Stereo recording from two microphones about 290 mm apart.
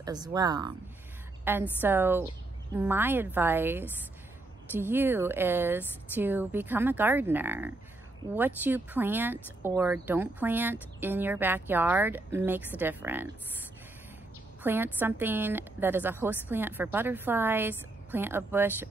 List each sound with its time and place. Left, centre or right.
0.0 s speech: centre
14.6 s speech: centre